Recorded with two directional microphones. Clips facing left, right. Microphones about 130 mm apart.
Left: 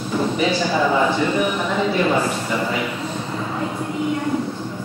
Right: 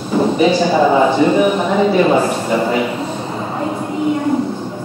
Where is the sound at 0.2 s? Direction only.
25° right (ahead or behind).